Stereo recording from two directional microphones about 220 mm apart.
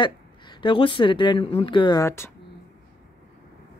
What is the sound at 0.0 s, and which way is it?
Speech, 20° left (ahead or behind).